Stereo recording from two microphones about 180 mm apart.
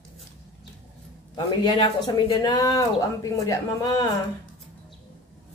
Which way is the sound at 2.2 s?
20° left (ahead or behind).